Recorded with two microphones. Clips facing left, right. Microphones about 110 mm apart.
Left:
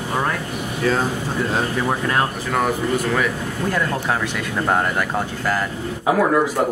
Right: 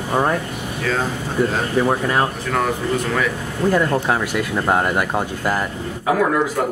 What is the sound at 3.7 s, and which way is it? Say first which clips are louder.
Speech: right 4 dB; 10° right (ahead or behind).